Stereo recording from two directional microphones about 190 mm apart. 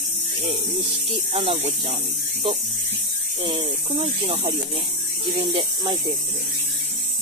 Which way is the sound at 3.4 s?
25° right (ahead or behind).